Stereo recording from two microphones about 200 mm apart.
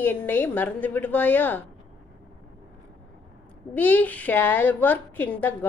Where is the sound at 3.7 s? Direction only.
10° left (ahead or behind).